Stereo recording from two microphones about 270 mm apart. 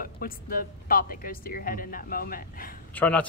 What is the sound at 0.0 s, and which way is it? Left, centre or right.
Speech, left.